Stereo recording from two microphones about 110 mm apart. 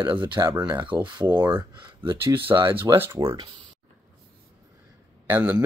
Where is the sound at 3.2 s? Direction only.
35° right (ahead or behind).